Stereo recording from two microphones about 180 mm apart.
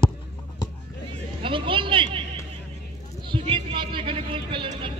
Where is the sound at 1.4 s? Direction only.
30° right (ahead or behind).